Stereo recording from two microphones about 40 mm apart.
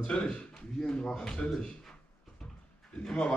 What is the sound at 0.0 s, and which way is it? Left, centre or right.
A man's voice, left.